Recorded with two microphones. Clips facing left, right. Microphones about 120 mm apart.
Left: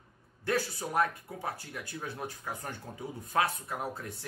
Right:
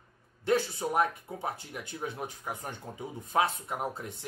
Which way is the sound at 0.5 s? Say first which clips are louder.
Right 4 dB; 20° right (ahead or behind).